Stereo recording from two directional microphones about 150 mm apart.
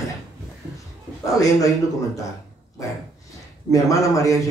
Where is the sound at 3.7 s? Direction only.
20° left (ahead or behind).